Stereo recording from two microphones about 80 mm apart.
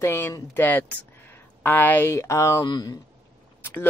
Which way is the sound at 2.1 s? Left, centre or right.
Left.